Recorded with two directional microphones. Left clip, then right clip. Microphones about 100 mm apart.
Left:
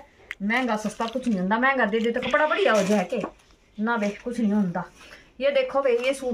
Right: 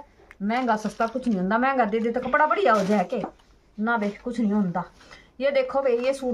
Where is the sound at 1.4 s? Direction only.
45° right (ahead or behind).